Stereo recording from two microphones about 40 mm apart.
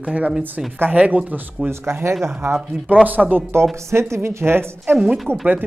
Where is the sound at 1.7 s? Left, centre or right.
Right.